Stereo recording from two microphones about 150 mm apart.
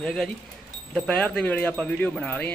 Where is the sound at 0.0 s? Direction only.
5° left (ahead or behind).